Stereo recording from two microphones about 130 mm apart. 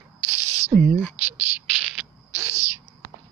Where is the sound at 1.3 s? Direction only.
10° right (ahead or behind).